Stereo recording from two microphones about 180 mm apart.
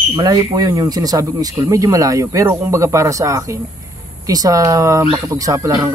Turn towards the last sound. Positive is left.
turn(degrees=-20)  # may be behind; listen again after turning